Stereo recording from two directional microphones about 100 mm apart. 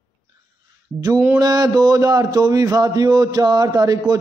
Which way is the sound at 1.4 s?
40° right (ahead or behind).